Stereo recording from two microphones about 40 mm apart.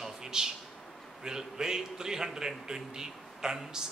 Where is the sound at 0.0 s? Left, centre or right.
Centre.